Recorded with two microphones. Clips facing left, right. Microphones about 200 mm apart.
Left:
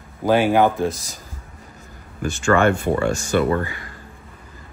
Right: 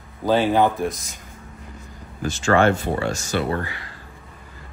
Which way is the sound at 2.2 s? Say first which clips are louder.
Left 1 dB; 55° left (ahead or behind).